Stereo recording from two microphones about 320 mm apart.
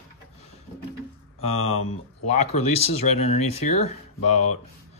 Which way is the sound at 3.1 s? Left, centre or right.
Centre.